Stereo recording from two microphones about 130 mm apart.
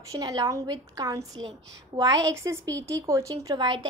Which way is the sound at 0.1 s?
30° right (ahead or behind).